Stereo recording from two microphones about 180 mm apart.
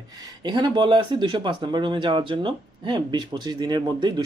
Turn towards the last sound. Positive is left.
turn(degrees=-25)  # may be behind; listen again after turning